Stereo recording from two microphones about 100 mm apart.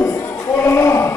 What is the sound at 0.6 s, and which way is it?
Sheep, 25° left (ahead or behind).